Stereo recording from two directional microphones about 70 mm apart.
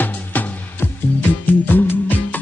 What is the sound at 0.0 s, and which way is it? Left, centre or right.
Music, left.